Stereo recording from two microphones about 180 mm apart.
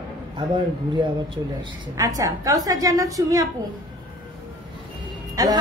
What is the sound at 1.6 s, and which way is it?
A woman's voice, 20° right (ahead or behind).